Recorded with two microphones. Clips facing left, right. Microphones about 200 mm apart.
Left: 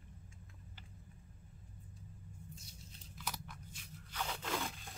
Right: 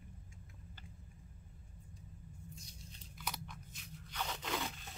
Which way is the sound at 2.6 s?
5° left (ahead or behind).